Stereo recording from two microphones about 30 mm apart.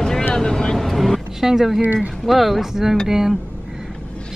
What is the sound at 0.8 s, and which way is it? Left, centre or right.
Vehicle, centre.